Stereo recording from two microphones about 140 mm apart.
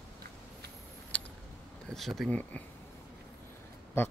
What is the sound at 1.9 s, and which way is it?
Speech, centre (ahead or behind).